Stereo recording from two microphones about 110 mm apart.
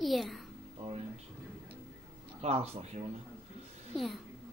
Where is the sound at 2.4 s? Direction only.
75° right (ahead or behind).